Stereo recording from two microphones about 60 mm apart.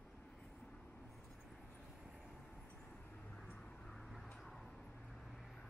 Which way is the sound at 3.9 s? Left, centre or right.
Centre.